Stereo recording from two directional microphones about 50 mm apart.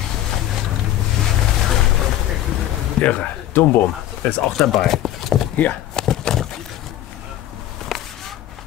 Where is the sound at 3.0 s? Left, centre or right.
Left.